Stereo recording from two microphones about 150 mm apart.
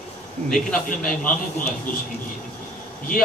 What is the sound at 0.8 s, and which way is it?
Speech, 65° left (ahead or behind).